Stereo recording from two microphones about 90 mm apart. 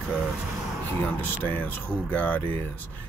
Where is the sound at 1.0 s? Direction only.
20° left (ahead or behind).